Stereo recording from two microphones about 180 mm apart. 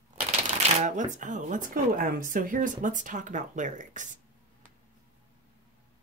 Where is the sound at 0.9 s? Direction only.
45° right (ahead or behind).